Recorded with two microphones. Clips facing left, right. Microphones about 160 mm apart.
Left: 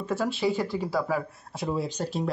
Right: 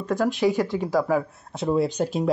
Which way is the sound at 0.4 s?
15° right (ahead or behind).